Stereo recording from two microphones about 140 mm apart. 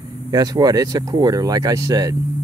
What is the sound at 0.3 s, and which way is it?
Speech, 25° right (ahead or behind).